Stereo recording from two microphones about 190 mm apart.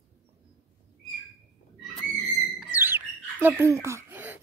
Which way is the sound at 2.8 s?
10° right (ahead or behind).